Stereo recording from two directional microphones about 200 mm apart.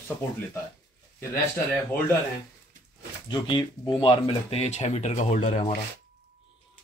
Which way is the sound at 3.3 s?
25° left (ahead or behind).